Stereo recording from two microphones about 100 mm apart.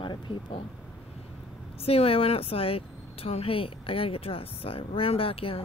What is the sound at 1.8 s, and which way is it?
A woman's voice, 80° left.